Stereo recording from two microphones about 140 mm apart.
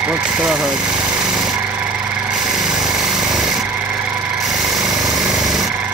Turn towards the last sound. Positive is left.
turn(degrees=-5)  # may be behind; listen again after turning